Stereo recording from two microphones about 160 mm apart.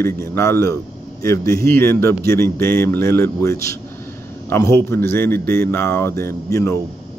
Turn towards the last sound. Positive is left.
turn(degrees=15)  # may be behind; listen again after turning